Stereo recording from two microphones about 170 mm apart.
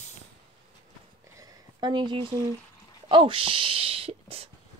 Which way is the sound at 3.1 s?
30° right (ahead or behind).